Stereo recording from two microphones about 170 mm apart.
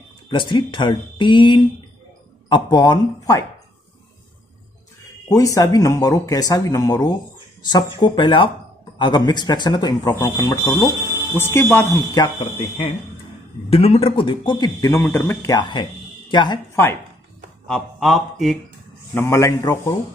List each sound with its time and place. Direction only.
0.3 s speech: 30° left (ahead or behind)
5.3 s speech: 20° left (ahead or behind)
13.7 s speech: 35° left (ahead or behind)
17.6 s speech: centre (ahead or behind)
19.1 s speech: 15° left (ahead or behind)